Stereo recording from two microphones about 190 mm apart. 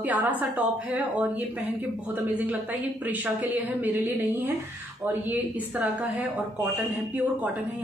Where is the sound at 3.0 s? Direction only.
10° right (ahead or behind).